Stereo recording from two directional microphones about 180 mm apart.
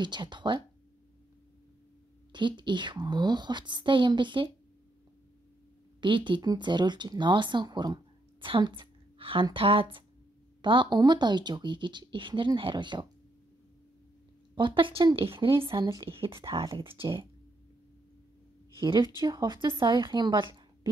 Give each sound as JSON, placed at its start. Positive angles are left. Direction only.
{"t": 0.0, "sound": "speech", "side_deg": -25}
{"t": 2.3, "sound": "speech", "side_deg": -25}
{"t": 5.9, "sound": "speech", "side_deg": -25}
{"t": 14.5, "sound": "speech", "side_deg": -25}
{"t": 16.6, "sound": "speech", "side_deg": -15}
{"t": 16.9, "sound": "speech", "side_deg": -30}
{"t": 18.8, "sound": "speech", "side_deg": -25}